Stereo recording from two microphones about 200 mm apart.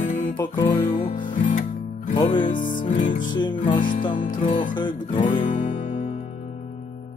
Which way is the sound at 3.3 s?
25° left (ahead or behind).